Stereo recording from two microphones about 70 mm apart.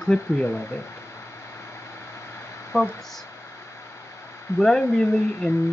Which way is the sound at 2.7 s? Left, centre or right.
Left.